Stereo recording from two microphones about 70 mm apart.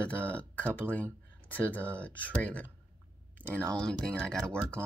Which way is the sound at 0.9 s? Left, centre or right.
Left.